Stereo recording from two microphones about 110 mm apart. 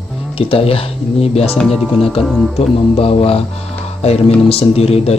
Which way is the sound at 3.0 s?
60° left (ahead or behind).